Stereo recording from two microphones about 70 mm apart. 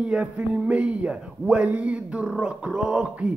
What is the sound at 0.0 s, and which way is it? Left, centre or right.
Speech, centre.